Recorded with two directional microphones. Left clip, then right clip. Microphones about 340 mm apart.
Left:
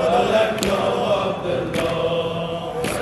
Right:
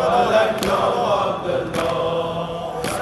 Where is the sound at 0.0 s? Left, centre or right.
Centre.